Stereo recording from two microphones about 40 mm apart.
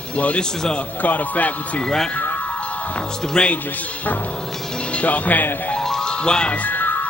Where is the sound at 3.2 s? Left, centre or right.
Left.